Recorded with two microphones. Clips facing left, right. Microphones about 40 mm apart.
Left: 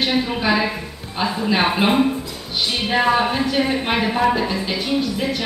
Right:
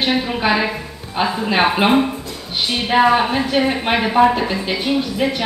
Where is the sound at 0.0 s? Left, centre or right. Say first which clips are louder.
Right 2 dB; centre.